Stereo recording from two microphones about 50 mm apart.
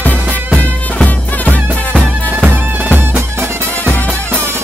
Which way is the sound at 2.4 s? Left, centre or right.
Right.